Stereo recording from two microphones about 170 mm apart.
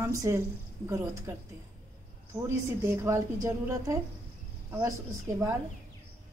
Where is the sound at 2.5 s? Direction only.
15° right (ahead or behind).